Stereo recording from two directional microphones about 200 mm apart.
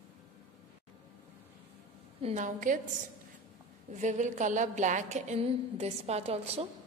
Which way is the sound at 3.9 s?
35° right (ahead or behind).